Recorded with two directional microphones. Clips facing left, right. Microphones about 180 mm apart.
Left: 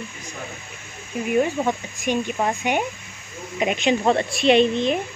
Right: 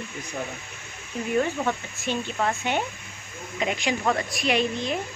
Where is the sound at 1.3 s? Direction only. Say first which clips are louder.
Left 4 dB; 15° left (ahead or behind).